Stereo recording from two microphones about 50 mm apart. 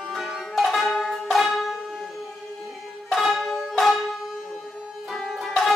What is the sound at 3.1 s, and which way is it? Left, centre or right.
Banjo, centre.